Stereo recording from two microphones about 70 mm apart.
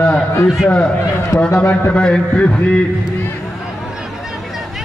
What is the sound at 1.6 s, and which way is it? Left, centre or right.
Speech, left.